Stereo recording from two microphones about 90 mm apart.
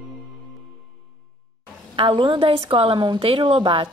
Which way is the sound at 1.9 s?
80° right.